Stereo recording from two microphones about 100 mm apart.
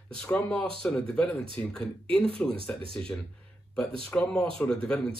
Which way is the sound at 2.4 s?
10° left (ahead or behind).